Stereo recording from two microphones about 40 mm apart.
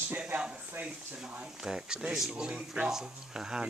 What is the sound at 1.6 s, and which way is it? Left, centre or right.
Speech, right.